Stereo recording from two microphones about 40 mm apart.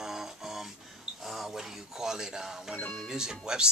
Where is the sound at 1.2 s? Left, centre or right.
Centre.